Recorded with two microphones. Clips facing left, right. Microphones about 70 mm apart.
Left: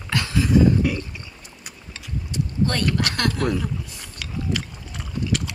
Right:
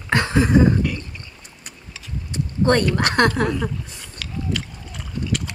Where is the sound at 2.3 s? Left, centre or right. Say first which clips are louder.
Right 6 dB; right.